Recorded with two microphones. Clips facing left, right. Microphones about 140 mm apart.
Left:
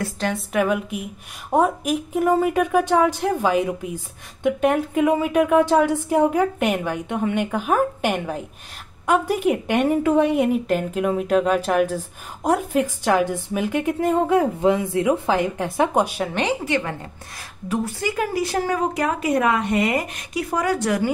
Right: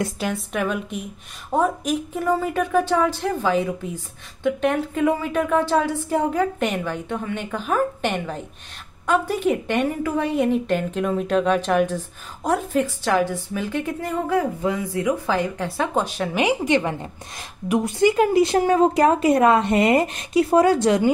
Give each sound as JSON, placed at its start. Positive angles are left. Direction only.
{"t": 0.2, "sound": "a woman's voice", "side_deg": 0}
{"t": 9.8, "sound": "a woman's voice", "side_deg": 20}
{"t": 16.3, "sound": "speech", "side_deg": -15}